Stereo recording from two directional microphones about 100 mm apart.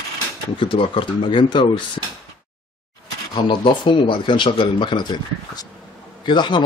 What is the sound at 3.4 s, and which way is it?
Speech, 55° left (ahead or behind).